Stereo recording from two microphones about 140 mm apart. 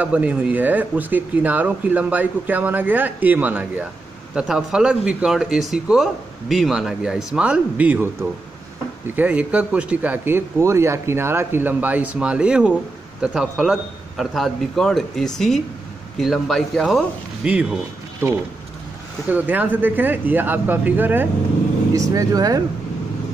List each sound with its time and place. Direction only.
0.0 s a man's voice: 10° right (ahead or behind)
17.5 s speech: 10° right (ahead or behind)
21.9 s speech: 25° right (ahead or behind)